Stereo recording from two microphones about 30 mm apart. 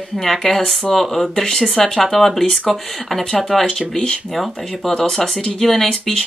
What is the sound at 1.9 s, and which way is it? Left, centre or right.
Speech, centre.